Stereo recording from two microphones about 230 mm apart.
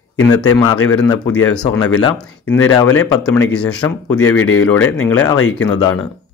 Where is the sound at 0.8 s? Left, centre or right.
Centre.